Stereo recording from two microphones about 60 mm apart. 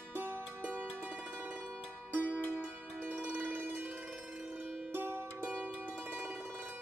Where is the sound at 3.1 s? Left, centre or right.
Right.